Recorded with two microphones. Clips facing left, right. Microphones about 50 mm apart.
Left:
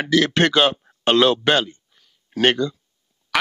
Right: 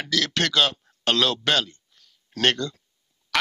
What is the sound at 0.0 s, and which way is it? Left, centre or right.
Speech, left.